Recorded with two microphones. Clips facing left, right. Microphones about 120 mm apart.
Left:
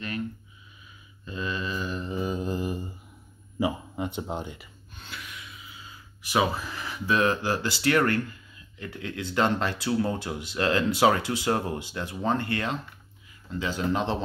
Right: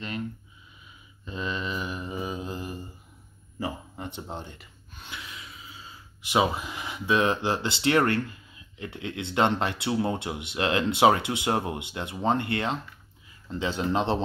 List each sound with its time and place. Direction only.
1.2 s mantra: 25° right (ahead or behind); by 2.8 s centre (ahead or behind)
3.5 s a sound: 15° left (ahead or behind)
5.1 s speech: 25° right (ahead or behind)